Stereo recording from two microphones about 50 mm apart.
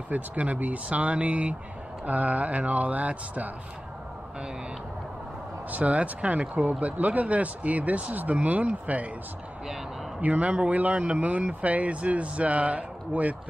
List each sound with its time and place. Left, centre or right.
0.1 s speech: right
5.7 s speech: right
10.2 s speech: right